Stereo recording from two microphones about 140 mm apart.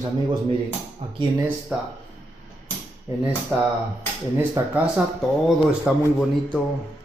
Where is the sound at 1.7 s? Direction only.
5° right (ahead or behind).